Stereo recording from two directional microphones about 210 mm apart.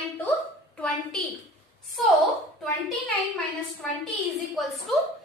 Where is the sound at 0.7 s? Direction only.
5° left (ahead or behind).